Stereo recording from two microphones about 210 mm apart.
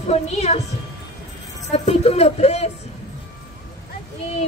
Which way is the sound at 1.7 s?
30° left (ahead or behind).